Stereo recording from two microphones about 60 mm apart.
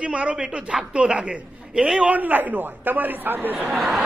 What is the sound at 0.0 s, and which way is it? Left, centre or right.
A woman's voice, centre.